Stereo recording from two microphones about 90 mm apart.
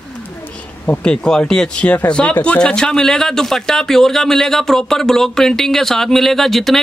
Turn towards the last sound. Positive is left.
turn(degrees=0)  # may be behind; listen again after turning